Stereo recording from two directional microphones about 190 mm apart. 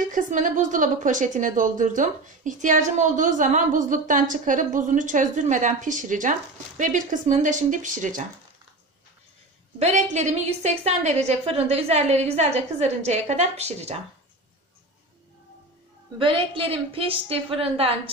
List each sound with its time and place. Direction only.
0.0 s speech: 45° right (ahead or behind)
9.8 s speech: 35° right (ahead or behind)
16.2 s a woman's voice: 30° right (ahead or behind)